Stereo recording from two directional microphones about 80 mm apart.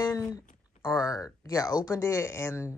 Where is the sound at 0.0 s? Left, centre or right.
Left.